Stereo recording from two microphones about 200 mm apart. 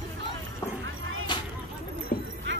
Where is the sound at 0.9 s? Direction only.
80° right.